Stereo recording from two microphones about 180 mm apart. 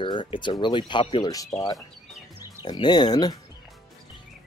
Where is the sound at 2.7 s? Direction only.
25° left (ahead or behind).